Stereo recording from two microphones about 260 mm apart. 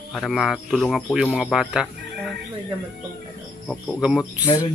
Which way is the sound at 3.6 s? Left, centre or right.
Centre.